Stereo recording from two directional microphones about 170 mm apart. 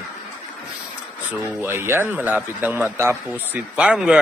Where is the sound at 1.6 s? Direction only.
15° right (ahead or behind).